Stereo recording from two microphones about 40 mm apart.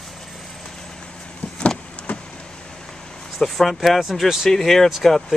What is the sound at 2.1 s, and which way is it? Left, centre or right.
Vehicle, left.